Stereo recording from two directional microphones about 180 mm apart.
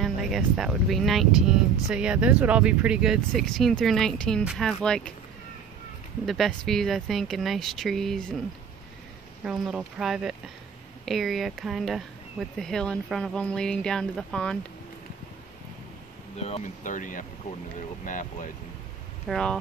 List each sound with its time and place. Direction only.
0.0 s speech: centre (ahead or behind)
6.2 s speech: centre (ahead or behind)
9.4 s speech: 5° right (ahead or behind)
16.3 s speech: 35° left (ahead or behind)
19.2 s speech: 5° left (ahead or behind)